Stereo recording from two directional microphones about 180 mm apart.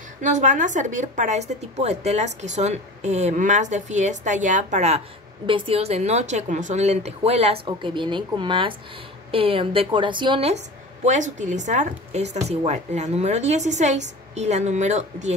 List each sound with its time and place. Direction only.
0.2 s a woman's voice: 45° right (ahead or behind)
11.1 s a woman's voice: 45° right (ahead or behind)